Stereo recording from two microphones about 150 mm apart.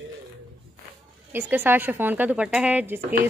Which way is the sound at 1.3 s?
15° right (ahead or behind).